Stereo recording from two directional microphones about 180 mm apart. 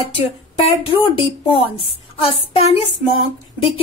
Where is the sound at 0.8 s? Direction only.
30° left (ahead or behind).